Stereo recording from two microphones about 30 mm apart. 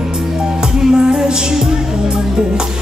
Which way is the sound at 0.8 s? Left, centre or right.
Right.